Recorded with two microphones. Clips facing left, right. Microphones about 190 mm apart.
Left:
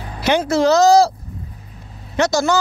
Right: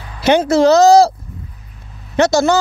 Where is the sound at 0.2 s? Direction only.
25° right (ahead or behind).